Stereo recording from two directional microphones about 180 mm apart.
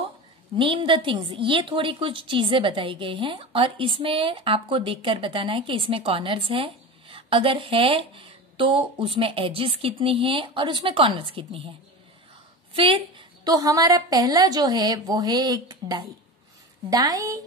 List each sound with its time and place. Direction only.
0.6 s a woman's voice: 30° right (ahead or behind)
12.7 s a woman's voice: 30° right (ahead or behind)